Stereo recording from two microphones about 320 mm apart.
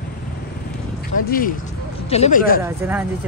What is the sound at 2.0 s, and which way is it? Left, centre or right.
Speech, centre.